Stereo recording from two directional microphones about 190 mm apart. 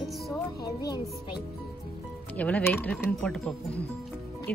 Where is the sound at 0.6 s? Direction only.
20° left (ahead or behind).